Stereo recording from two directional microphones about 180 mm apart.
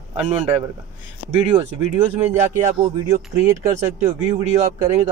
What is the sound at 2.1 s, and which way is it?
Speech, 10° right (ahead or behind).